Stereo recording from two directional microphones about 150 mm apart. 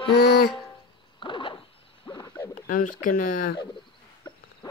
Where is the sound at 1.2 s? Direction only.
35° left (ahead or behind).